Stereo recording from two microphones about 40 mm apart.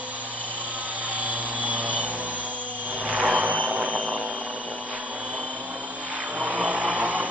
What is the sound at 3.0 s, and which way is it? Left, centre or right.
Vehicle, right.